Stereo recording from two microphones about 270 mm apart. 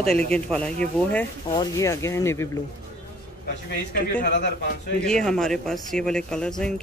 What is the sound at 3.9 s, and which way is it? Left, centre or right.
Speech, left.